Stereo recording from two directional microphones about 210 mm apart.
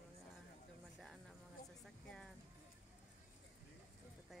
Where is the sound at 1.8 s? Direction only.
Centre (ahead or behind).